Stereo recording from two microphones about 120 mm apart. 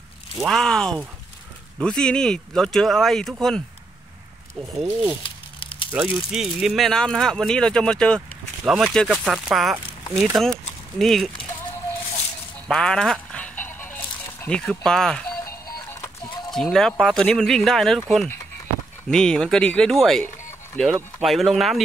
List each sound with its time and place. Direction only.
0.4 s speech: 5° left (ahead or behind)
5.2 s crumpling: 45° left (ahead or behind)
5.9 s speech: 15° right (ahead or behind)
6.3 s speech: 5° right (ahead or behind)
12.6 s music: 5° left (ahead or behind)
15.4 s music: 20° left (ahead or behind)
16.5 s speech: 5° left (ahead or behind)